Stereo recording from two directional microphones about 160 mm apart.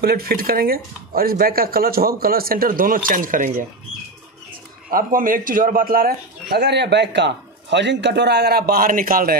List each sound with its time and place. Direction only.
0.0 s a man's voice: 75° right (ahead or behind); by 3.6 s 60° right (ahead or behind)
4.9 s a man's voice: 60° right (ahead or behind)